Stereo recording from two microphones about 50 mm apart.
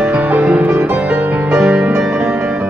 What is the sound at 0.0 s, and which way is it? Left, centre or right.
Music, right.